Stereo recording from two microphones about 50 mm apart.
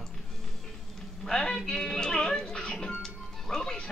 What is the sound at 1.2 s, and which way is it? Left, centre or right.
Music, centre.